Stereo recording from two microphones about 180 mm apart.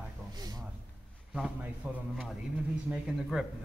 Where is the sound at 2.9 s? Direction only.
5° right (ahead or behind).